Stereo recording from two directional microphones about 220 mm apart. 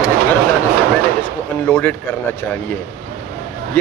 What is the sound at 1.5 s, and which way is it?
Speech, 10° left (ahead or behind).